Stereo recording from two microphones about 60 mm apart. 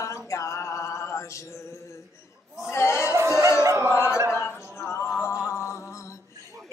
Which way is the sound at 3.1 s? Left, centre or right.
Right.